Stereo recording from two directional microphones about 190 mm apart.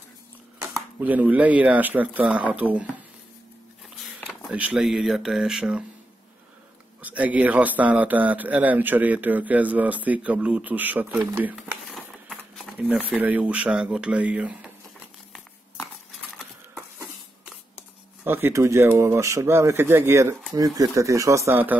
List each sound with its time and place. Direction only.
0.6 s a man's voice: 10° right (ahead or behind)
4.0 s a sound: centre (ahead or behind)
4.5 s speech: 5° right (ahead or behind)
7.0 s a man's voice: 10° right (ahead or behind)
18.2 s a man's voice: 10° right (ahead or behind)